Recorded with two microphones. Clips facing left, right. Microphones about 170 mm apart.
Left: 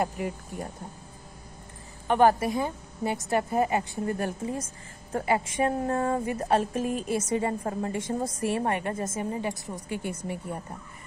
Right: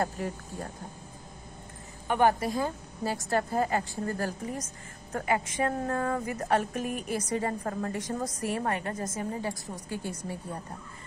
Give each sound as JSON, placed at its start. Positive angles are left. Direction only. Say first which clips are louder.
{"t": 0.0, "sound": "speech", "louder": "left 2 dB", "side_deg": 15}
{"t": 2.4, "sound": "a woman's voice", "louder": "left 2 dB", "side_deg": 20}